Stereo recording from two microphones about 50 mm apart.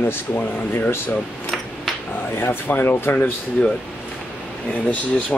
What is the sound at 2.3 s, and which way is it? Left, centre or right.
Speech, left.